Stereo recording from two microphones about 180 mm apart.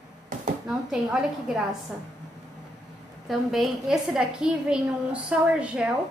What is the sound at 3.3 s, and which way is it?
A woman's voice, centre (ahead or behind).